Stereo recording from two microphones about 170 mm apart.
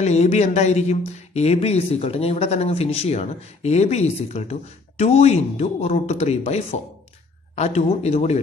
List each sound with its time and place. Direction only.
0.0 s speech: 40° left (ahead or behind)